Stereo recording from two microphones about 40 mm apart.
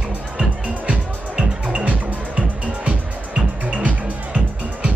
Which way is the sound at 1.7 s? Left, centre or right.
Right.